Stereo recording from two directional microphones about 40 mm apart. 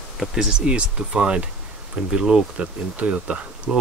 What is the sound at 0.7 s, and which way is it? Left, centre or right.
Speech, right.